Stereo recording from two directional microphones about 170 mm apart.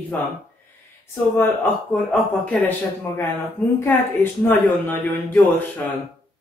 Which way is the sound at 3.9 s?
10° left (ahead or behind).